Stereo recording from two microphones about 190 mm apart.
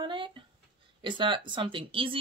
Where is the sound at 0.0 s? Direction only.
25° right (ahead or behind).